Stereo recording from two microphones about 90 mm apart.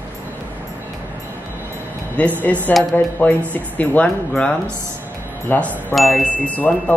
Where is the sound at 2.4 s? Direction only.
20° left (ahead or behind).